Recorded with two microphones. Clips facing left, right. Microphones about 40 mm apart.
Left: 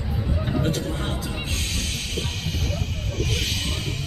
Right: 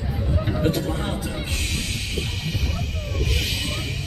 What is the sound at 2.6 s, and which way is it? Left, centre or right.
Vehicle, centre.